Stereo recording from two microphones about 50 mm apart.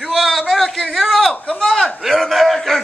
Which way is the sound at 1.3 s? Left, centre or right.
Centre.